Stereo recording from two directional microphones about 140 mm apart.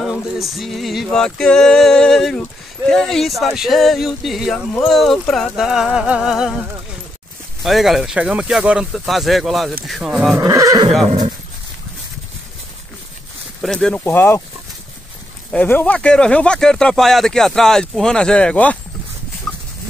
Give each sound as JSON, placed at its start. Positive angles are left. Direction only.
{"t": 0.0, "sound": "speech", "side_deg": -5}
{"t": 7.6, "sound": "speech", "side_deg": 0}
{"t": 10.4, "sound": "speech", "side_deg": -25}
{"t": 13.6, "sound": "speech", "side_deg": 5}
{"t": 14.0, "sound": "speech", "side_deg": 15}
{"t": 15.5, "sound": "speech", "side_deg": 10}
{"t": 19.5, "sound": "a sound", "side_deg": 0}